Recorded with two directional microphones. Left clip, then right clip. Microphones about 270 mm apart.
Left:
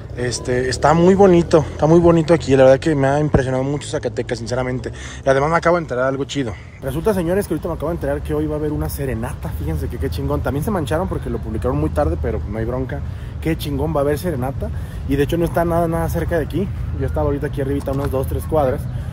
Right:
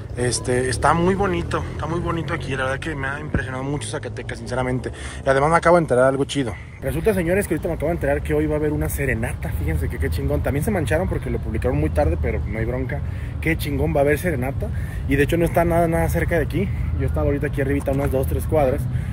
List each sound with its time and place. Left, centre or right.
0.2 s speech: centre